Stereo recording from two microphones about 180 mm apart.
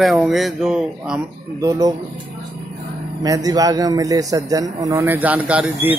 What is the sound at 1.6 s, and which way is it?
Speech, 20° right (ahead or behind).